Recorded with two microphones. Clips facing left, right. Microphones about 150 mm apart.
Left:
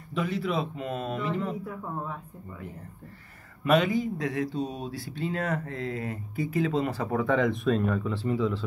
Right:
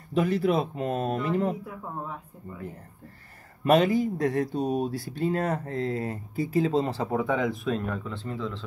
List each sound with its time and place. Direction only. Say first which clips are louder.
0.1 s speech: right 5 dB; 45° right (ahead or behind)
3.6 s speech: right 3 dB; 40° right (ahead or behind)
7.1 s speech: left 1 dB; 10° right (ahead or behind); by 8.6 s 10° left (ahead or behind)